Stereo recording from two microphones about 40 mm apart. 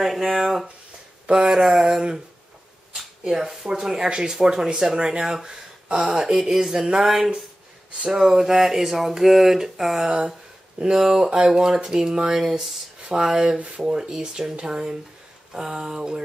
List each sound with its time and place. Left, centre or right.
0.0 s speech: centre
1.2 s speech: right
3.3 s speech: centre
5.9 s speech: right
6.1 s speech: centre
10.0 s speech: centre
11.0 s speech: centre
11.2 s speech: centre
13.6 s speech: right
13.9 s speech: centre